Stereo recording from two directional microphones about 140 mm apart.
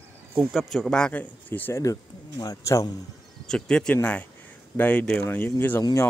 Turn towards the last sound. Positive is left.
turn(degrees=25)  # may be behind; listen again after turning